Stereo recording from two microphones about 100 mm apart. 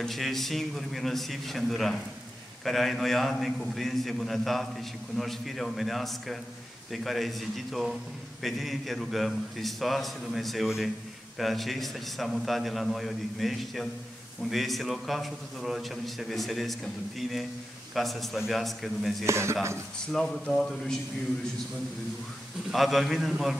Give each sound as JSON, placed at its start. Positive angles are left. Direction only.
{"t": 0.0, "sound": "a man's voice", "side_deg": 0}
{"t": 19.2, "sound": "speech", "side_deg": -30}
{"t": 20.1, "sound": "a man's voice", "side_deg": 5}
{"t": 22.7, "sound": "a man's voice", "side_deg": 0}